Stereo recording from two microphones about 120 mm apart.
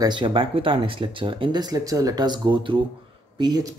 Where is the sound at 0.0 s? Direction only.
40° right (ahead or behind).